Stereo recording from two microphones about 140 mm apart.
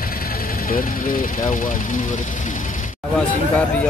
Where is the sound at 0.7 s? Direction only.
85° left.